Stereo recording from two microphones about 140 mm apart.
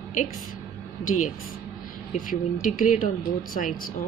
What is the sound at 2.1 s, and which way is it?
Speech, 70° left (ahead or behind).